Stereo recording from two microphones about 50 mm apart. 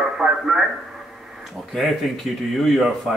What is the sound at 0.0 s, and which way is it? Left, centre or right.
Radio, centre.